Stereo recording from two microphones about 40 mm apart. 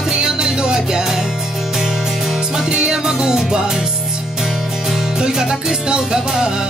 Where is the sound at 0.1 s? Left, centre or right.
Centre.